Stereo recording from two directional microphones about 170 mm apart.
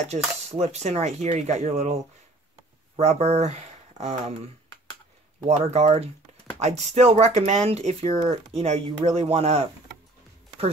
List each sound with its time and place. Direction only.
0.1 s speech: 40° right (ahead or behind)
3.0 s speech: 40° right (ahead or behind)
5.5 s speech: 40° right (ahead or behind)